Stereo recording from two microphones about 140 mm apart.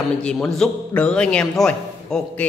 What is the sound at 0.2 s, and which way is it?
A man's voice, 5° left (ahead or behind).